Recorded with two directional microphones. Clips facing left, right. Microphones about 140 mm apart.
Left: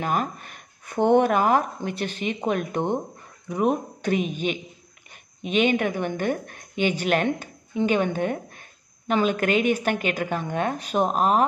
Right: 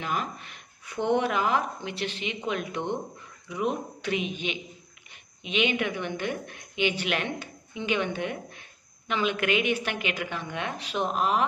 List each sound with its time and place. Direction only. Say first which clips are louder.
0.0 s a woman's voice: left 5 dB; 45° left (ahead or behind)